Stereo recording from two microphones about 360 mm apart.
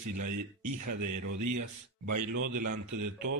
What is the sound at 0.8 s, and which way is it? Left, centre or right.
A man's voice, right.